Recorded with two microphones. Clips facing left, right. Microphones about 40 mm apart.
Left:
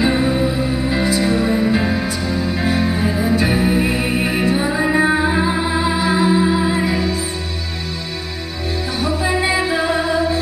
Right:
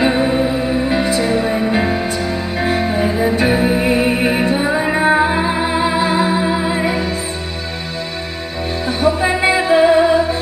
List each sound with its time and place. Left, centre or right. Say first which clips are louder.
0.0 s music: right 2 dB; right
1.2 s music: even; right
5.9 s music: even; right
9.0 s music: right 5 dB; right